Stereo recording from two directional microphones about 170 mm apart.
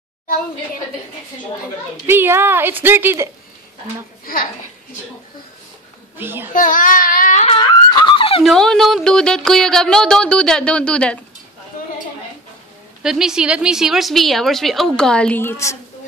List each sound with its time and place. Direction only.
2.0 s a woman's voice: 15° right (ahead or behind)
4.3 s a child's voice: 60° left (ahead or behind)
6.1 s a woman's voice: 15° right (ahead or behind)
6.5 s child singing: 50° left (ahead or behind)
7.4 s a sound: 30° left (ahead or behind)
8.5 s a woman's voice: centre (ahead or behind)
13.0 s a woman's voice: 5° right (ahead or behind); by 15.8 s 15° left (ahead or behind)